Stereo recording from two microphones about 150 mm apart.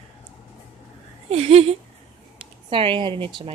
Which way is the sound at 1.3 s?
45° right (ahead or behind).